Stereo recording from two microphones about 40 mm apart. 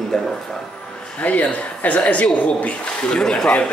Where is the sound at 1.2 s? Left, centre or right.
Left.